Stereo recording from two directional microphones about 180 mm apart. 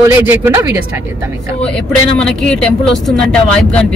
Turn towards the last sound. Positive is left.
turn(degrees=5)  # may be behind; listen again after turning